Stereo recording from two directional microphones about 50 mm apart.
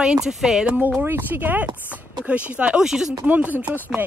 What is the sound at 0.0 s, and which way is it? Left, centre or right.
Chopping, centre.